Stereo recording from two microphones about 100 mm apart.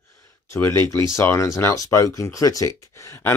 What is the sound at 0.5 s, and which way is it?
Speech, 25° left (ahead or behind).